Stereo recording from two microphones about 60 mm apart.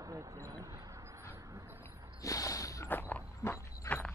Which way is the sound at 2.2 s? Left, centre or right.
Left.